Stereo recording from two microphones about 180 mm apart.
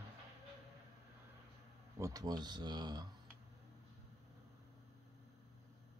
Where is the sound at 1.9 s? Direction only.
20° right (ahead or behind).